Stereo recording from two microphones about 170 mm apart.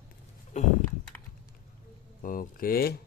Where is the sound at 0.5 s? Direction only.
45° left (ahead or behind).